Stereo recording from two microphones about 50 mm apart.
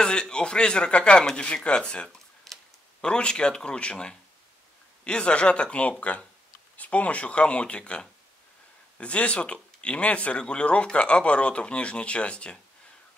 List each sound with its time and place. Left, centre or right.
0.0 s speech: centre
2.1 s tick-tock: centre
3.0 s speech: centre